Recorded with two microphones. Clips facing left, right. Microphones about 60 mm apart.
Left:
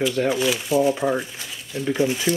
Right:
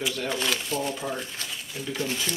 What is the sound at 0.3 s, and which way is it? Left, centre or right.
Speech, centre.